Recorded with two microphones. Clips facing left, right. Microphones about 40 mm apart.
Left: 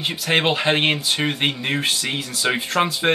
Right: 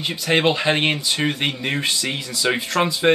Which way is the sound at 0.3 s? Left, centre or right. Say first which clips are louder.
Right 1 dB; centre.